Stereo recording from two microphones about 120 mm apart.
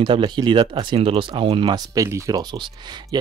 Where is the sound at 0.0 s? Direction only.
40° right (ahead or behind).